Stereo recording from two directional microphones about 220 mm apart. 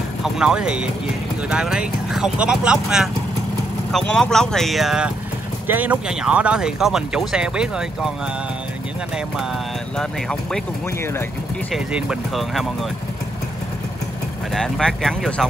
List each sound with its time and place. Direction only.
0.2 s speech: 5° right (ahead or behind)
9.9 s speech: 5° left (ahead or behind)
11.7 s speech: centre (ahead or behind)
14.5 s speech: 5° left (ahead or behind)